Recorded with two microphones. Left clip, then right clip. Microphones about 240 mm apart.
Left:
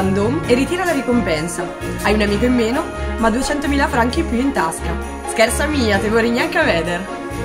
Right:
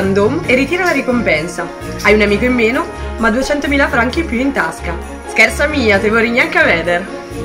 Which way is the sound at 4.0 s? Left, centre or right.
Centre.